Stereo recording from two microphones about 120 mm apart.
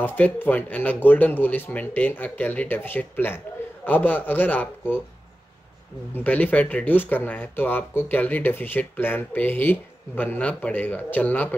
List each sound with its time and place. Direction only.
0.0 s speech: 15° left (ahead or behind)
6.1 s speech: 15° left (ahead or behind)